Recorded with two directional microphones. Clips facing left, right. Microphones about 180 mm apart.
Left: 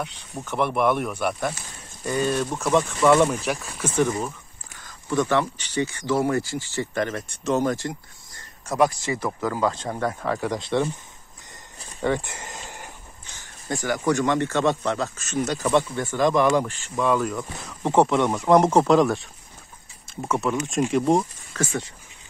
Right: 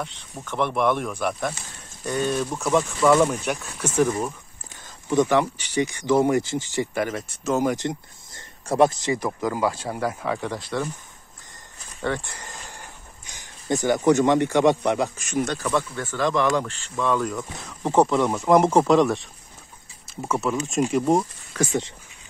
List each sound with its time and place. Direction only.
0.4 s speech: 5° left (ahead or behind)
4.8 s speech: 20° right (ahead or behind)
7.7 s speech: 20° right (ahead or behind)
10.6 s speech: 25° left (ahead or behind)
12.0 s a sound: 15° left (ahead or behind)
13.3 s speech: 20° right (ahead or behind)
15.6 s speech: 20° left (ahead or behind); by 21.3 s centre (ahead or behind)
21.5 s speech: 20° right (ahead or behind)